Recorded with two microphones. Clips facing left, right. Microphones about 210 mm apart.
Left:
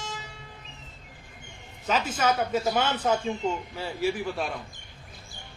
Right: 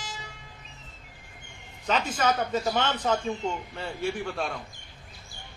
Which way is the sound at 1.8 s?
5° left (ahead or behind).